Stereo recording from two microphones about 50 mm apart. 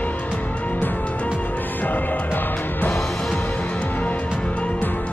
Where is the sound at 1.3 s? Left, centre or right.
Left.